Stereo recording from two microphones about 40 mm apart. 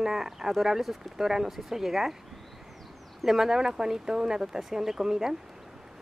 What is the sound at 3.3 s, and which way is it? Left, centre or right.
Speech, centre.